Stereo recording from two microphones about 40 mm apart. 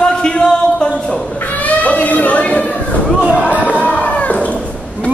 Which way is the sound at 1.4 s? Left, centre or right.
Left.